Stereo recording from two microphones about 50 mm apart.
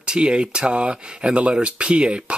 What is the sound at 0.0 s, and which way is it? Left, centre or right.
Speech, right.